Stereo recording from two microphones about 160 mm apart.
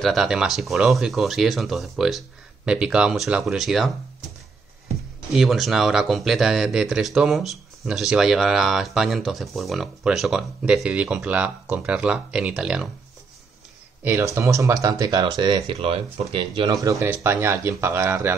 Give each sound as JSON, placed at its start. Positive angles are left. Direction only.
{"t": 0.0, "sound": "speech", "side_deg": 0}
{"t": 5.3, "sound": "speech", "side_deg": 0}
{"t": 14.0, "sound": "speech", "side_deg": -20}
{"t": 17.0, "sound": "speech", "side_deg": -15}